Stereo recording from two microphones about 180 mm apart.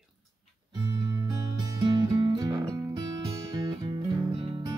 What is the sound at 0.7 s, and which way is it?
Music, 25° right (ahead or behind).